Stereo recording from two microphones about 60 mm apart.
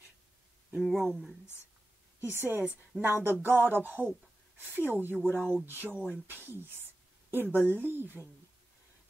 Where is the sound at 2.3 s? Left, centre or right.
Right.